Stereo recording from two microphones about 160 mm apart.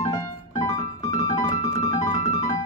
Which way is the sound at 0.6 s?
25° left (ahead or behind).